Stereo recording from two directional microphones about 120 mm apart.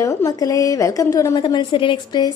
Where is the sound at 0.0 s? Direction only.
25° left (ahead or behind).